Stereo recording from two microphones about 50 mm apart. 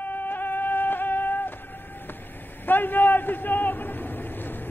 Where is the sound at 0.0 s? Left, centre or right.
Left.